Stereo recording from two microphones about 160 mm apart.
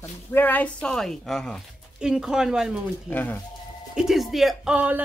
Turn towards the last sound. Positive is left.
turn(degrees=-10)  # may be behind; listen again after turning